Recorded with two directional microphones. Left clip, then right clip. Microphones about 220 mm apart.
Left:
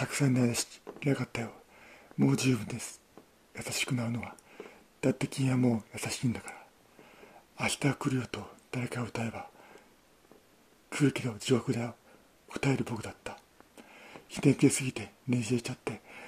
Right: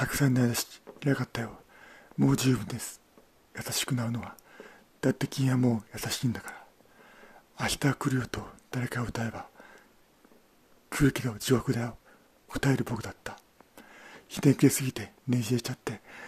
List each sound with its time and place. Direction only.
0.0 s speech: 15° right (ahead or behind)
7.5 s speech: 20° right (ahead or behind)
10.9 s speech: 20° right (ahead or behind)